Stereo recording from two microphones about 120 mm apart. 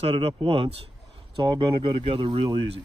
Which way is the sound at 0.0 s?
55° right (ahead or behind).